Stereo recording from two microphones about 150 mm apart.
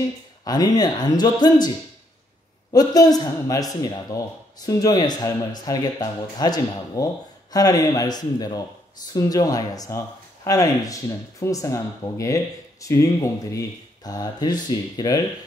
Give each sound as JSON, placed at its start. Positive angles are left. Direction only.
{"t": 0.5, "sound": "speech", "side_deg": 25}
{"t": 2.7, "sound": "speech", "side_deg": 25}